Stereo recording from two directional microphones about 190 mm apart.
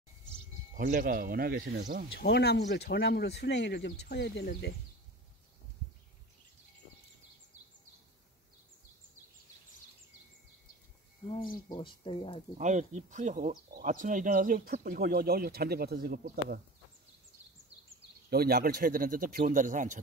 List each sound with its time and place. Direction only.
0.7 s speech: 45° right (ahead or behind)
2.1 s speech: 60° left (ahead or behind)
11.7 s speech: 25° left (ahead or behind)
12.5 s speech: 40° right (ahead or behind)
18.3 s speech: 55° right (ahead or behind)